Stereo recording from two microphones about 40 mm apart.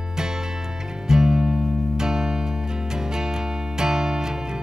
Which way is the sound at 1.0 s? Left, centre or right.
Centre.